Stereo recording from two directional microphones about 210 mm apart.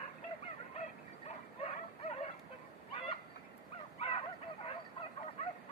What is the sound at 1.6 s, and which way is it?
Dog, 30° left (ahead or behind).